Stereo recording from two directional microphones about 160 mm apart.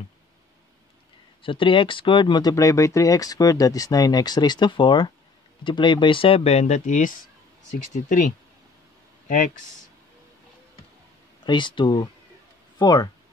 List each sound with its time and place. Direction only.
1.4 s speech: 30° left (ahead or behind); by 8.3 s 50° left (ahead or behind)
11.4 s speech: 30° left (ahead or behind)